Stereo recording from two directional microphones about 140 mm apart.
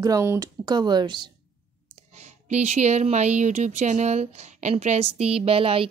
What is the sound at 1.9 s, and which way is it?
Speech, 50° right (ahead or behind).